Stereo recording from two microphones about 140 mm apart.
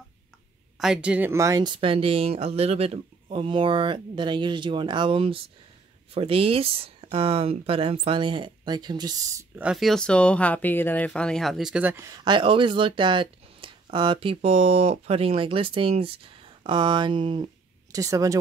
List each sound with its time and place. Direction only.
0.7 s speech: 5° right (ahead or behind); by 9.5 s 25° right (ahead or behind)
9.6 s speech: 5° right (ahead or behind); by 12.2 s 20° right (ahead or behind)
12.3 s speech: 35° right (ahead or behind)
17.9 s speech: 25° right (ahead or behind)